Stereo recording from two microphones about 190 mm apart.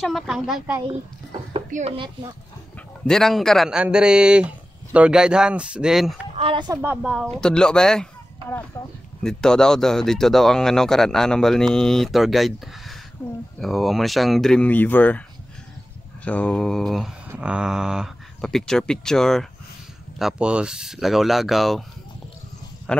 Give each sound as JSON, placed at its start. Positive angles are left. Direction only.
{"t": 0.0, "sound": "speech", "side_deg": 0}
{"t": 1.7, "sound": "speech", "side_deg": -40}
{"t": 3.1, "sound": "speech", "side_deg": 0}
{"t": 6.3, "sound": "speech", "side_deg": -30}
{"t": 6.8, "sound": "speech", "side_deg": -5}
{"t": 16.3, "sound": "speech", "side_deg": 5}
{"t": 22.9, "sound": "speech", "side_deg": 5}